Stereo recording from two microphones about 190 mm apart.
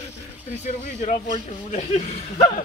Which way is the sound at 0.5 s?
35° left (ahead or behind).